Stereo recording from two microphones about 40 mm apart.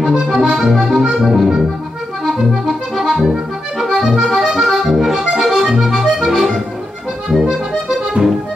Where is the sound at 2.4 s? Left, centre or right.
Centre.